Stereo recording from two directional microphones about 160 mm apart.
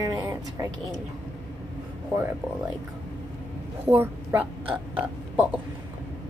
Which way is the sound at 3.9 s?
15° right (ahead or behind).